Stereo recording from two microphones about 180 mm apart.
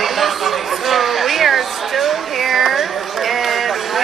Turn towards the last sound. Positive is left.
turn(degrees=0)  # may be behind; listen again after turning